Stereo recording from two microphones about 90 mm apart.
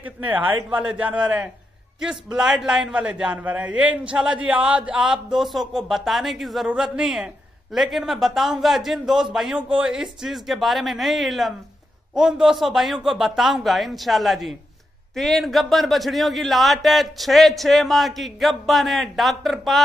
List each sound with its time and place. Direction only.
0.0 s a man's voice: 20° right (ahead or behind); by 19.8 s centre (ahead or behind)